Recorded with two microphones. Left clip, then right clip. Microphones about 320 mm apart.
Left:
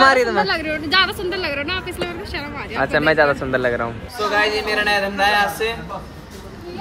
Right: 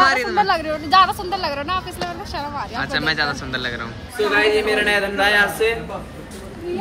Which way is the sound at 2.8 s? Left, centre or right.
Centre.